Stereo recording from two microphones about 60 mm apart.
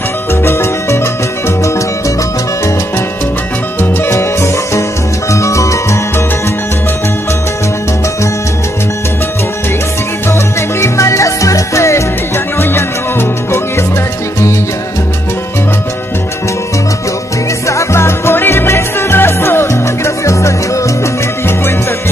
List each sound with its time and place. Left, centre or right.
0.4 s music: left
4.1 s music: left
10.8 s salsa music: left
12.5 s music: left
17.6 s music: left
20.2 s salsa music: left